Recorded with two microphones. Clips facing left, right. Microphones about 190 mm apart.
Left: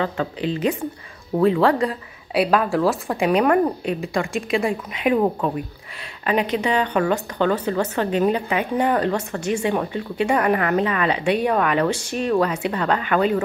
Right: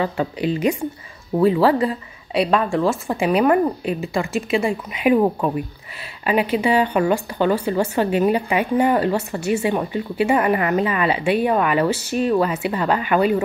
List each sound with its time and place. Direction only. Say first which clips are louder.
0.0 s a woman's voice: right 2 dB; 10° right (ahead or behind)